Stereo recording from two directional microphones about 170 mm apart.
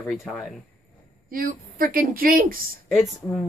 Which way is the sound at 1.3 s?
55° right (ahead or behind).